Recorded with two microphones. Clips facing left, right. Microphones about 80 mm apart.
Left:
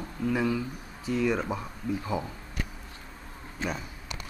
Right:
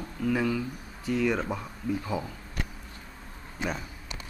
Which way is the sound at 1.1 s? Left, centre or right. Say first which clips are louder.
Even; right.